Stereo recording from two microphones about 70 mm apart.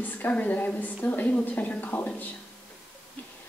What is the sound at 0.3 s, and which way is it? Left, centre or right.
A woman's voice, left.